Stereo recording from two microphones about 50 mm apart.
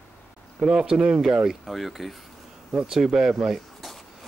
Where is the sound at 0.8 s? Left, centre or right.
Right.